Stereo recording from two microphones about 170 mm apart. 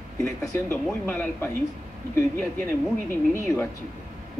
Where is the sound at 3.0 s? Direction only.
15° left (ahead or behind).